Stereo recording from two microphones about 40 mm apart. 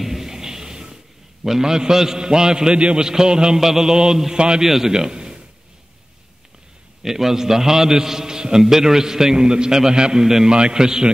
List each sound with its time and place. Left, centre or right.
0.0 s music: centre
1.4 s a man's voice: centre
3.5 s a man's voice: centre
4.9 s a sound: centre
7.0 s a man's voice: centre